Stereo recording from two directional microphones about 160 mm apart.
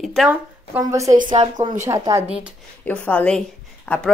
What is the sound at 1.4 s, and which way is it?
Speech, 45° right (ahead or behind).